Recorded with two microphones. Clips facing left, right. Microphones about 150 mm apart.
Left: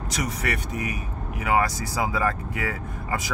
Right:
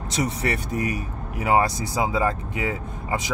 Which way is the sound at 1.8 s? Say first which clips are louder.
Right 2 dB; 20° right (ahead or behind).